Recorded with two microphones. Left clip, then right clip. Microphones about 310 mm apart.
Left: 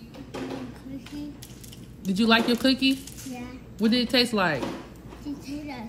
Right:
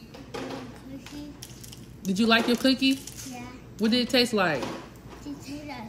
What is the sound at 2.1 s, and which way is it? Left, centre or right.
A man's voice, left.